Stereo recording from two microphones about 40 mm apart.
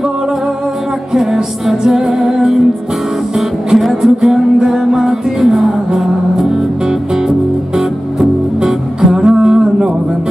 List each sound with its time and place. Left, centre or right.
1.1 s music: centre